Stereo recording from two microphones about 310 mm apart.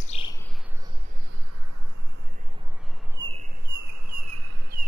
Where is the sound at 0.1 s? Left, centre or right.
Centre.